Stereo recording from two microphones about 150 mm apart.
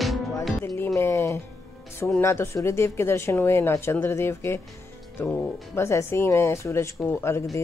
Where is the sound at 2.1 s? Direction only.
15° left (ahead or behind).